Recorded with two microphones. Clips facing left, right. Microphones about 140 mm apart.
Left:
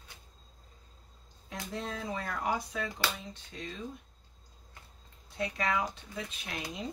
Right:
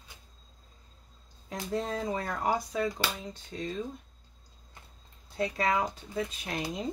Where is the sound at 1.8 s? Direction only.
35° right (ahead or behind).